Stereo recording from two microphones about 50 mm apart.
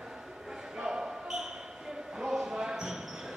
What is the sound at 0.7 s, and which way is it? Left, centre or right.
Basketball bounce, centre.